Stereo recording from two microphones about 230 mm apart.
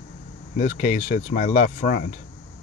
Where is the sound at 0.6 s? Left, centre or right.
Left.